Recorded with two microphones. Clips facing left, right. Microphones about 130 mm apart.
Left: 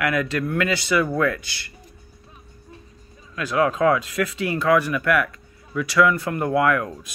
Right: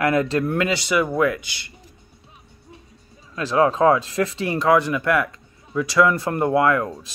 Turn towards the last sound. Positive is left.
turn(degrees=-30)  # may be behind; listen again after turning